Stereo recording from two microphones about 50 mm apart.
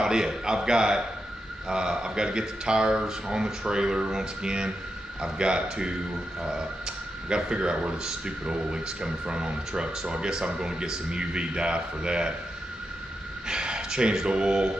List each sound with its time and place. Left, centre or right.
0.0 s speech: centre
7.2 s speech: centre
13.5 s speech: centre